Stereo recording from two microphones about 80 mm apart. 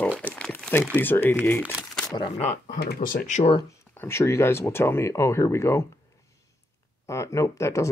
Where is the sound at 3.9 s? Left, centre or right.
Left.